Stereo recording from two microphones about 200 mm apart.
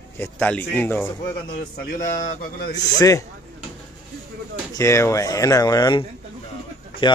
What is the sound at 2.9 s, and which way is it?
Speech, 15° left (ahead or behind).